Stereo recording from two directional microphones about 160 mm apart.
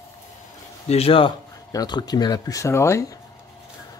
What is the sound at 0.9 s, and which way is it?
Speech, 35° left (ahead or behind).